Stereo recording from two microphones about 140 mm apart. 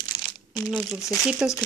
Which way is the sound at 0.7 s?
5° right (ahead or behind).